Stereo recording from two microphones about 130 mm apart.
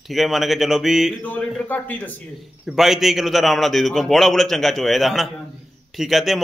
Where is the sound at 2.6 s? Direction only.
Centre (ahead or behind).